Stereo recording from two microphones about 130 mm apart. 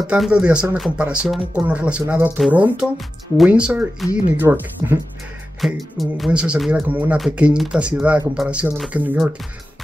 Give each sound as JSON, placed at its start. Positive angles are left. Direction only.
{"t": 0.0, "sound": "speech", "side_deg": -5}
{"t": 4.4, "sound": "speech", "side_deg": -20}
{"t": 5.6, "sound": "speech", "side_deg": 0}